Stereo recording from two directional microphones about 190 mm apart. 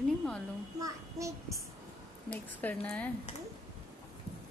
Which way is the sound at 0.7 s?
15° right (ahead or behind).